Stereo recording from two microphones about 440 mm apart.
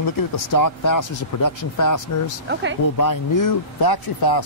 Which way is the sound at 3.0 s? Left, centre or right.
Left.